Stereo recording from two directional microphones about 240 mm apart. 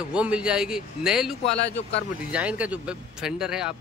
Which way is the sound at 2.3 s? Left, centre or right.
Centre.